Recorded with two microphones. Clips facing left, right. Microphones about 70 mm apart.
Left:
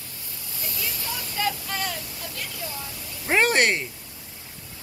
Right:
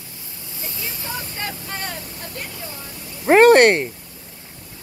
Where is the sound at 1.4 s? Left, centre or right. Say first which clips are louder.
Left 6 dB; right.